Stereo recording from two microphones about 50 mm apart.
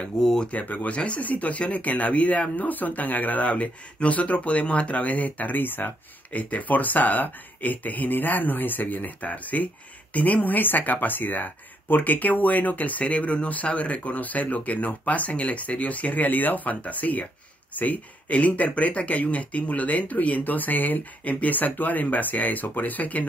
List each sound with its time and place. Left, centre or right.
0.2 s speech: centre
0.5 s speech: left